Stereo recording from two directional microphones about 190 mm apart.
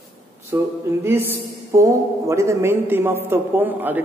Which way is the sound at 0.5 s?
15° right (ahead or behind).